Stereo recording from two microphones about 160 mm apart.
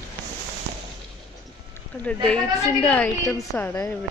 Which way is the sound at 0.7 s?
90° right.